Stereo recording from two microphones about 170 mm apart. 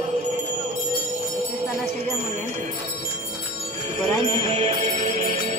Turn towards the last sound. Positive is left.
turn(degrees=-45)  # may be behind; listen again after turning